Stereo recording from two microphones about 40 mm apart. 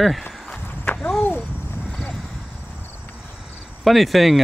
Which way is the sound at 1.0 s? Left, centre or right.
Centre.